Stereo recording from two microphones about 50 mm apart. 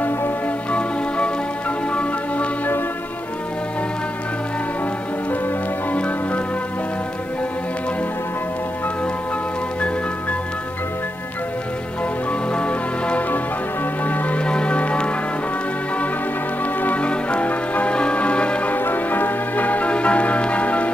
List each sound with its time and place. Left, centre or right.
0.7 s music: left
5.9 s music: left
12.3 s music: left
14.0 s music: left
14.4 s music: left
16.8 s music: left
18.8 s change ringing: left